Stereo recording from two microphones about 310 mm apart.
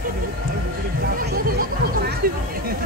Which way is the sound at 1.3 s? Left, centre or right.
Right.